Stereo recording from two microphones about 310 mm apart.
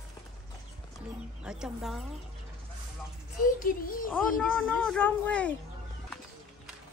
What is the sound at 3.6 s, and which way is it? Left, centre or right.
Speech, left.